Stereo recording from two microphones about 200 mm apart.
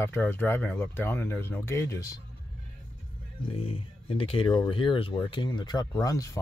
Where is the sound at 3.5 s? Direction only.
30° left (ahead or behind).